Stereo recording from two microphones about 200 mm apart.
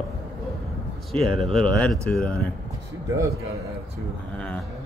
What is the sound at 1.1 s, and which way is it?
Speech, centre (ahead or behind).